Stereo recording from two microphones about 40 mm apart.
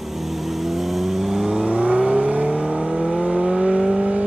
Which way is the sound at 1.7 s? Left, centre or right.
Right.